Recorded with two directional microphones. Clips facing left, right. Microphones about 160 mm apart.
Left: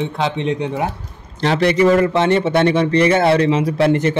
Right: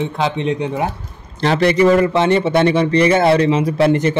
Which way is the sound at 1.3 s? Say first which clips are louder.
Right 1 dB; 45° right (ahead or behind).